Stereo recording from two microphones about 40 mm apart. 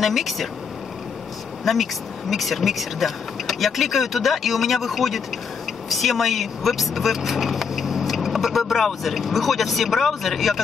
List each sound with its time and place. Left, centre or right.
0.0 s speech: centre
1.6 s speech: centre